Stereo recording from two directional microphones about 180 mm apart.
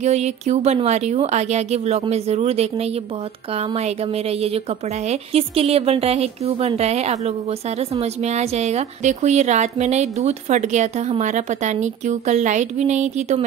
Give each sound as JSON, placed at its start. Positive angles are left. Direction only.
{"t": 0.0, "sound": "a woman's voice", "side_deg": -40}